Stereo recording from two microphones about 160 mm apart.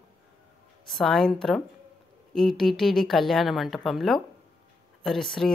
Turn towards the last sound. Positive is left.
turn(degrees=0)  # may be behind; listen again after turning